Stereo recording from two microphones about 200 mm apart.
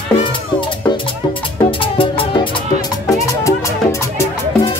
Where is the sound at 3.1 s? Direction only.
15° left (ahead or behind).